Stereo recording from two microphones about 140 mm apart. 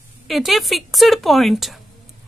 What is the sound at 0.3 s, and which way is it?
Speech, centre (ahead or behind).